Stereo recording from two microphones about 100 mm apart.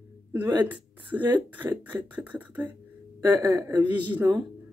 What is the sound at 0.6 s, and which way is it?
Speech, 15° right (ahead or behind).